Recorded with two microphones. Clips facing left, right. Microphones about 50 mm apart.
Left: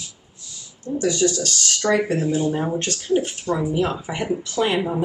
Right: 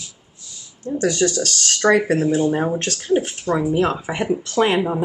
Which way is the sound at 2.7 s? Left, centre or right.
Right.